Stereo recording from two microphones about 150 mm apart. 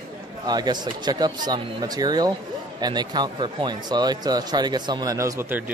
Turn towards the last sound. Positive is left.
turn(degrees=-15)  # may be behind; listen again after turning